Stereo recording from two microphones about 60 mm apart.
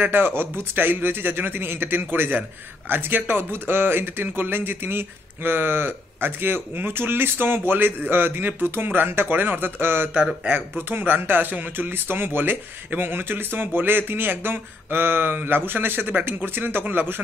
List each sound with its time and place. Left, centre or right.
0.0 s speech: right
10.1 s speech: centre
10.9 s speech: right